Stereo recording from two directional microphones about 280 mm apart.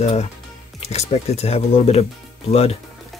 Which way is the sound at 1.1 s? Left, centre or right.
Left.